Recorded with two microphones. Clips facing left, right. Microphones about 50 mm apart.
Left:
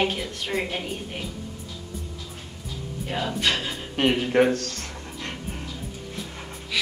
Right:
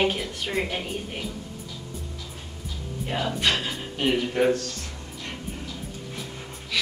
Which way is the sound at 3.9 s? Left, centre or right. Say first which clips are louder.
Left 4 dB; left.